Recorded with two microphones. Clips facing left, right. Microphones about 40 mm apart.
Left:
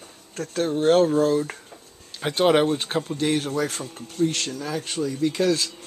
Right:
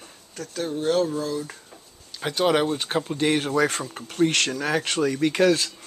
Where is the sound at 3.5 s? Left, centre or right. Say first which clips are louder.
Right 4 dB; right.